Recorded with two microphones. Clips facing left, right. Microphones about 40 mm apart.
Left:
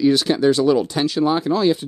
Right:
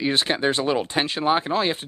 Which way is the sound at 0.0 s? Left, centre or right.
Right.